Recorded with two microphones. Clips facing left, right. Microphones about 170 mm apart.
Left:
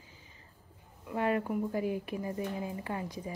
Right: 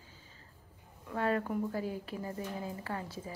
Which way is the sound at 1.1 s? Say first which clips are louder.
Left 2 dB; 15° left (ahead or behind).